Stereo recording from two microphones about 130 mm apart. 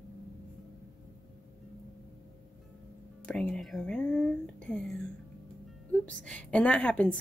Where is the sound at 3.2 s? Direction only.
10° left (ahead or behind).